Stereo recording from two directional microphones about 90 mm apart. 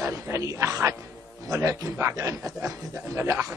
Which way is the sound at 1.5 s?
40° right (ahead or behind).